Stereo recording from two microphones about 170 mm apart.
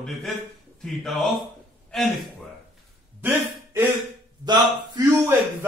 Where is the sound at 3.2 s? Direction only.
10° right (ahead or behind).